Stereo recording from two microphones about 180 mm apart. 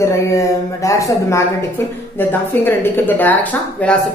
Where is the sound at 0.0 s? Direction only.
15° left (ahead or behind).